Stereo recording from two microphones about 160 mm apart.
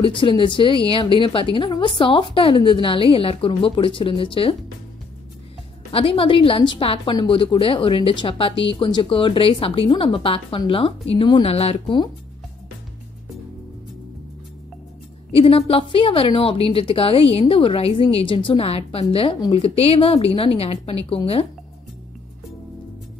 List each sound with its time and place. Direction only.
0.0 s a woman's voice: 30° left (ahead or behind)
5.9 s a woman's voice: 35° left (ahead or behind)
15.3 s a woman's voice: 35° left (ahead or behind)